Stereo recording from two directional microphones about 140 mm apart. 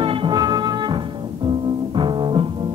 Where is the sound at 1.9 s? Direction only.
35° right (ahead or behind).